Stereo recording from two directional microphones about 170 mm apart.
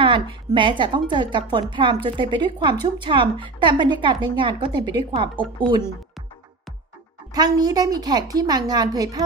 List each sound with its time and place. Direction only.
0.0 s a sound: 30° right (ahead or behind)
0.6 s a woman's voice: 30° right (ahead or behind)
7.3 s a woman's voice: 25° right (ahead or behind)